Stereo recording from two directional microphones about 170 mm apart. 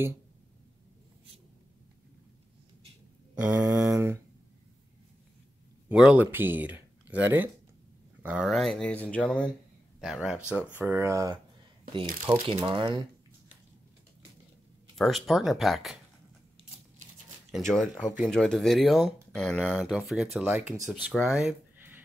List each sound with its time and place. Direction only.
3.3 s speech: 5° right (ahead or behind)
5.9 s speech: 10° right (ahead or behind)
12.5 s speech: 30° right (ahead or behind)
15.0 s speech: centre (ahead or behind)
17.5 s speech: centre (ahead or behind)